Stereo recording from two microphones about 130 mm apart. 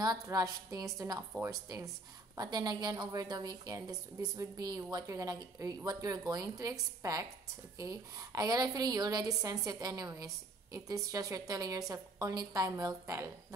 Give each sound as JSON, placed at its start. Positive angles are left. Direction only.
{"t": 0.0, "sound": "a woman's voice", "side_deg": -30}